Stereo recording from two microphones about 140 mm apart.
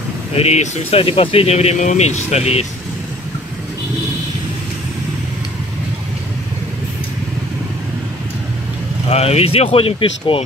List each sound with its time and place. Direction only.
0.3 s speech: 50° left (ahead or behind)
9.1 s speech: 45° left (ahead or behind)